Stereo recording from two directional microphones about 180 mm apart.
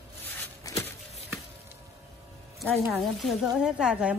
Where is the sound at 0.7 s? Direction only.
20° left (ahead or behind).